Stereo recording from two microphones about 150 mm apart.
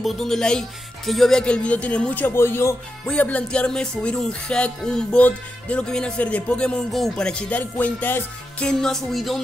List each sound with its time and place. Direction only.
0.0 s music: 5° left (ahead or behind)